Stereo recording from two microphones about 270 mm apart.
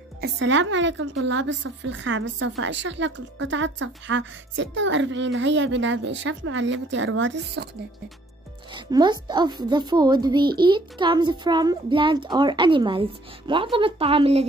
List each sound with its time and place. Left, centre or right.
0.2 s a woman's voice: right
8.7 s a woman's voice: centre